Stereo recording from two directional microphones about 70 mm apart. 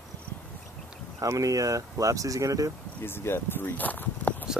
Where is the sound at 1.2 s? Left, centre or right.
Right.